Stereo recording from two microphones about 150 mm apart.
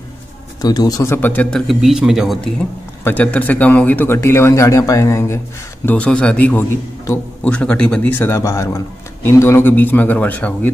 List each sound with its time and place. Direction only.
0.6 s a man's voice: 25° left (ahead or behind); by 2.5 s centre (ahead or behind)
3.0 s a man's voice: 10° left (ahead or behind)
5.9 s a man's voice: 10° left (ahead or behind)